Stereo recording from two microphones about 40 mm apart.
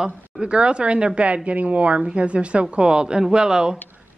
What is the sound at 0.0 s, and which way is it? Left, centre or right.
A woman's voice, right.